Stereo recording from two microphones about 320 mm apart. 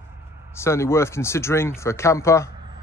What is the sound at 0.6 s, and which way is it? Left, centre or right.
Speech, centre.